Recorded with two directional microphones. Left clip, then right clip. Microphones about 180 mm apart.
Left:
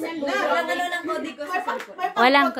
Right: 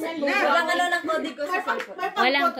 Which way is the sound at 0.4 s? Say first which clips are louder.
Right 2 dB; 20° right (ahead or behind).